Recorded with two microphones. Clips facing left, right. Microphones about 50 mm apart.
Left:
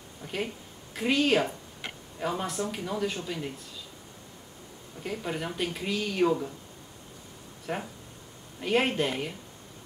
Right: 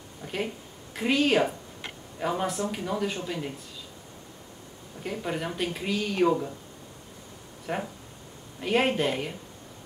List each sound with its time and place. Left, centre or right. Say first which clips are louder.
0.2 s a sound: right 1 dB; centre
0.9 s speech: right 1 dB; centre
5.0 s speech: right 2 dB; centre
7.6 s speech: right 2 dB; centre